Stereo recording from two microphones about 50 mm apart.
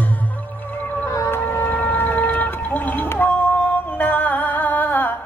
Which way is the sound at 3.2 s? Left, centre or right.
Left.